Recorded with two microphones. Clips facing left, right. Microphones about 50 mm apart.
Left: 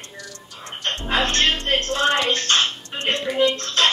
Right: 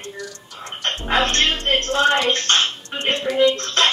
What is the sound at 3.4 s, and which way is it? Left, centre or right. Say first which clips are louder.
Speech: right 2 dB; right.